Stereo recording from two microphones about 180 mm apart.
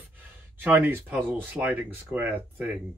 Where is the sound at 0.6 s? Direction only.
10° right (ahead or behind).